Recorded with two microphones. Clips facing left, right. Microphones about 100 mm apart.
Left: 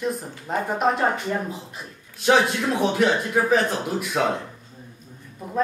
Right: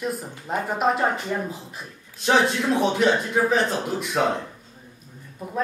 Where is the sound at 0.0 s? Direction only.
Centre (ahead or behind).